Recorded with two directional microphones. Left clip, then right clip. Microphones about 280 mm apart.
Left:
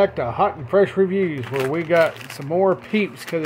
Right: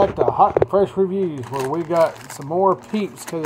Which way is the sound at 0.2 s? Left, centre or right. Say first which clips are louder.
Right 6 dB; left.